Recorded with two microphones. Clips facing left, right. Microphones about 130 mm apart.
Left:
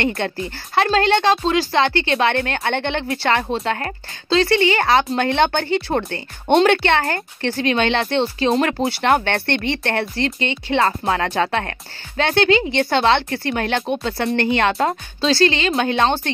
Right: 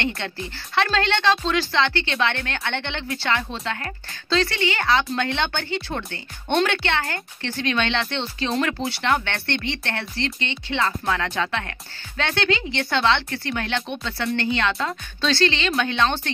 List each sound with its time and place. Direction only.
0.0 s speech: 45° left (ahead or behind)
4.3 s speech: 35° left (ahead or behind); by 15.0 s 50° left (ahead or behind)
15.1 s speech: 35° left (ahead or behind)